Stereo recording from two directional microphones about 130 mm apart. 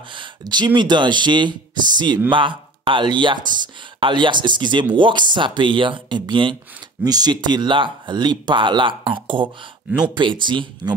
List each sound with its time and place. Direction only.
0.1 s speech: 35° right (ahead or behind)
9.8 s speech: 5° right (ahead or behind)
10.1 s speech: 40° right (ahead or behind)